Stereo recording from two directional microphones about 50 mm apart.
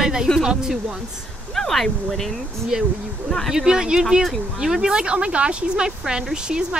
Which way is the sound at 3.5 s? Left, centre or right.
Centre.